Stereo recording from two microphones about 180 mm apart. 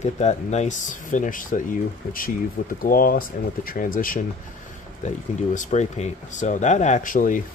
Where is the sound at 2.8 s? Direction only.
55° left (ahead or behind).